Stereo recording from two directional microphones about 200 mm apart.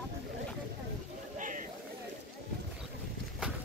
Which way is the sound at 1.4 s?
40° right (ahead or behind).